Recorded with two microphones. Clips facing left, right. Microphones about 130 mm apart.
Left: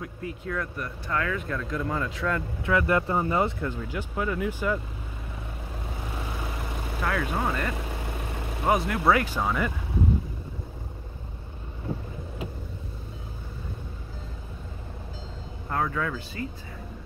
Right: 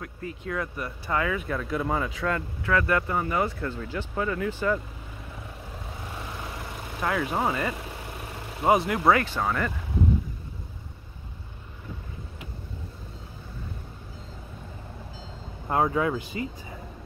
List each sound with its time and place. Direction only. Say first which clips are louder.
0.0 s speech: left 1 dB; 5° left (ahead or behind)
2.6 s speech: left 1 dB; 15° left (ahead or behind)
3.6 s speech: even; 10° left (ahead or behind)
7.0 s speech: right 2 dB; 10° right (ahead or behind)
15.7 s speech: right 4 dB; 25° right (ahead or behind)